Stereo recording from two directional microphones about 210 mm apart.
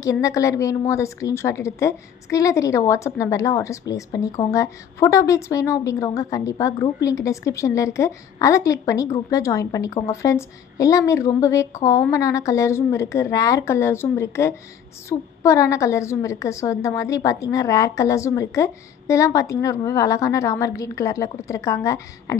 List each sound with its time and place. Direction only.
0.0 s a woman's voice: 15° left (ahead or behind)